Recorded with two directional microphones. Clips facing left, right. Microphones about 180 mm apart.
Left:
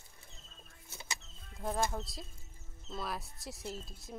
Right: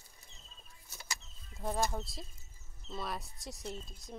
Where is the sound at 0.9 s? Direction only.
25° left (ahead or behind).